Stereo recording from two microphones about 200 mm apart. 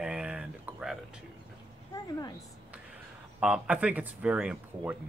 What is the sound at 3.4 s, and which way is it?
Speech, 5° right (ahead or behind).